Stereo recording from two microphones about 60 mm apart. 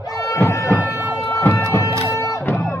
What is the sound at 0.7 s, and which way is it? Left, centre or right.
Siren, left.